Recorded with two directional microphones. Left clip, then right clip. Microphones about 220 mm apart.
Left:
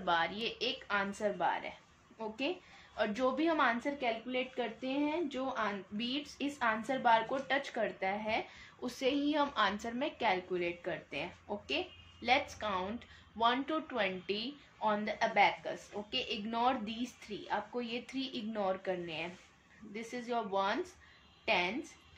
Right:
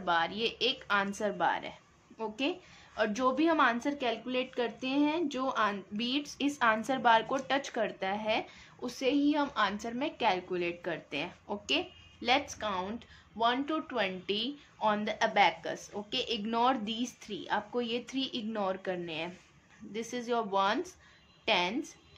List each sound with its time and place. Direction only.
0.0 s speech: 10° right (ahead or behind)